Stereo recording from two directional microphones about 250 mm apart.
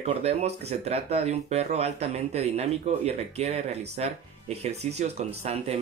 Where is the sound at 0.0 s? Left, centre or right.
Right.